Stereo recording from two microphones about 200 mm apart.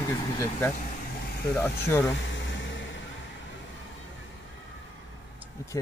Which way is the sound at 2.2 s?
65° left (ahead or behind).